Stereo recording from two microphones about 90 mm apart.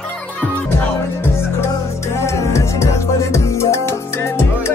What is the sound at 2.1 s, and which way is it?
Music, 35° left (ahead or behind).